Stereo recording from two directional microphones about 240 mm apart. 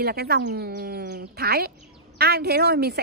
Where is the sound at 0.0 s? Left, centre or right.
Right.